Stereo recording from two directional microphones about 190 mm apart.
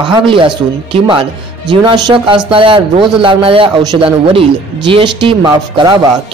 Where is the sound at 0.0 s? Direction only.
25° right (ahead or behind).